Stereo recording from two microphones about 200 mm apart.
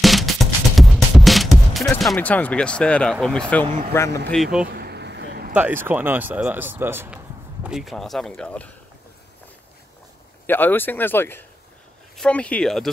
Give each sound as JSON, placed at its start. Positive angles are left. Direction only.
{"t": 0.0, "sound": "music", "side_deg": 0}
{"t": 2.1, "sound": "speech", "side_deg": 5}
{"t": 4.3, "sound": "speech", "side_deg": 0}
{"t": 4.6, "sound": "a sound", "side_deg": -50}
{"t": 5.5, "sound": "speech", "side_deg": -10}
{"t": 10.4, "sound": "speech", "side_deg": 10}